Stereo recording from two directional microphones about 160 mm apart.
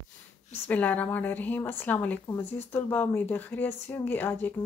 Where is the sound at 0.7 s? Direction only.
10° left (ahead or behind).